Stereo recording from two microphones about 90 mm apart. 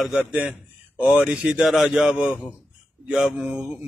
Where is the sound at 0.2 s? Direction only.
15° right (ahead or behind).